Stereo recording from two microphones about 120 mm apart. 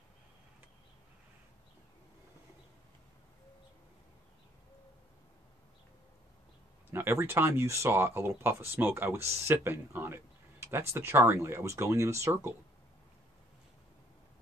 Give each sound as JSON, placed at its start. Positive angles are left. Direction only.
{"t": 6.9, "sound": "speech", "side_deg": -20}